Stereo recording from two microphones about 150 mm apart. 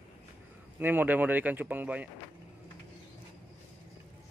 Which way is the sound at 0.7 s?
10° right (ahead or behind).